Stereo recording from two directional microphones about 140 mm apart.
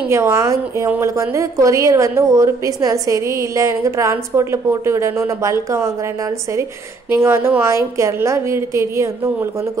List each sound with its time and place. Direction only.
0.1 s a woman's voice: 20° right (ahead or behind)